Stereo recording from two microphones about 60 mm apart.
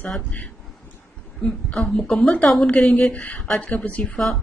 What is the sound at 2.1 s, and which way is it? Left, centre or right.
Speech, left.